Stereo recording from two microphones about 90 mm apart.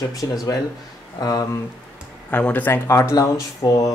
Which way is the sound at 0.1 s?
40° left (ahead or behind).